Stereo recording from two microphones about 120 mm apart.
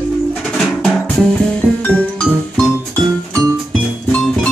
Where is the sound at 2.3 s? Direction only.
Centre (ahead or behind).